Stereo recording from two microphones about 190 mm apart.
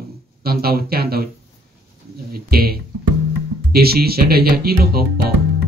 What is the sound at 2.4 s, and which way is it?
Speech, 55° right (ahead or behind).